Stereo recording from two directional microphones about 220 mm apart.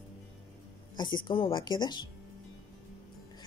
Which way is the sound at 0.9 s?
20° left (ahead or behind).